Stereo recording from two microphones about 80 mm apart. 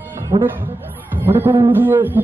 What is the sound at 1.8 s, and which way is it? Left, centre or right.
Speech, right.